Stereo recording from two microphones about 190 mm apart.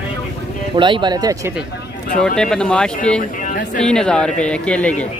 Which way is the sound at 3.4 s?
45° left (ahead or behind).